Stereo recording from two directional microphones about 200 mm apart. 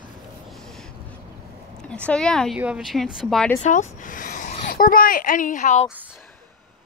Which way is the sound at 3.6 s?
40° left (ahead or behind).